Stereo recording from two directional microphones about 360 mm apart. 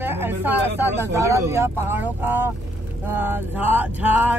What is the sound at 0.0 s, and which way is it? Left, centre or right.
Speech, centre.